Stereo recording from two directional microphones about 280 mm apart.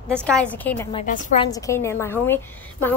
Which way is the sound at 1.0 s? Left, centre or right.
Left.